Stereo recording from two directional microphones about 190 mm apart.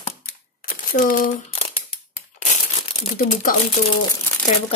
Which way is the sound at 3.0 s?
40° left (ahead or behind).